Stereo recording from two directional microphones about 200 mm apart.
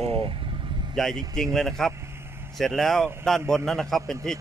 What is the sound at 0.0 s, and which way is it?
Vehicle, 30° right (ahead or behind).